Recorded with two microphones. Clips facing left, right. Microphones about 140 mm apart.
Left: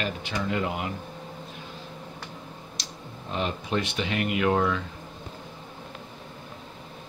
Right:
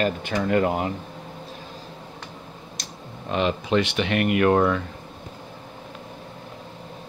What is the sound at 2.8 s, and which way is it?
Clicking, 50° right (ahead or behind).